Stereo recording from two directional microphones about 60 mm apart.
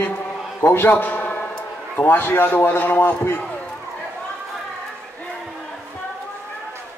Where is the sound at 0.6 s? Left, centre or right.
Left.